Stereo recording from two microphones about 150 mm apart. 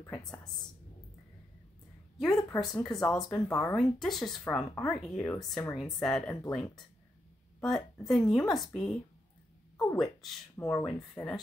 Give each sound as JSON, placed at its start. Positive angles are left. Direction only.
{"t": 0.2, "sound": "speech", "side_deg": 5}
{"t": 2.2, "sound": "speech", "side_deg": 20}
{"t": 2.6, "sound": "speech", "side_deg": 5}
{"t": 9.9, "sound": "speech", "side_deg": 0}
{"t": 10.7, "sound": "speech", "side_deg": 10}